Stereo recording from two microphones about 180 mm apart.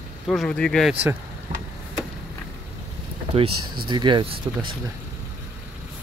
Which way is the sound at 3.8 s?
25° right (ahead or behind).